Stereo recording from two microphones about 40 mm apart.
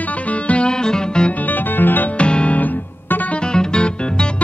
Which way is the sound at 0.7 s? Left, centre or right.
Centre.